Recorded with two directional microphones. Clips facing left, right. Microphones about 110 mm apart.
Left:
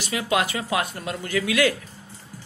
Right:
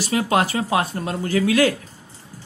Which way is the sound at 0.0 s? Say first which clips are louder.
Right 4 dB; 40° right (ahead or behind).